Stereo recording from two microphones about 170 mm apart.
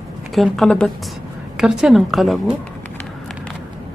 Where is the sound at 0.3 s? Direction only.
Centre (ahead or behind).